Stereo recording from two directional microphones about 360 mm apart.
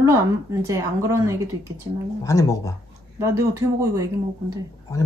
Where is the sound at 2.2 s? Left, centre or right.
Centre.